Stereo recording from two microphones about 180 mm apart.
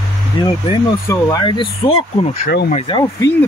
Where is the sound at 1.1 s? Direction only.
20° left (ahead or behind).